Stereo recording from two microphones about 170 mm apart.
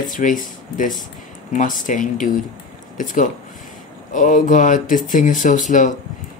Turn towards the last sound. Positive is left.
turn(degrees=50)  # may be behind; listen again after turning